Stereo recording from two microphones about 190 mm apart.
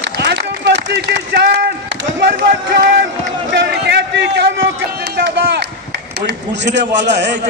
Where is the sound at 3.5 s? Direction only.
65° right (ahead or behind).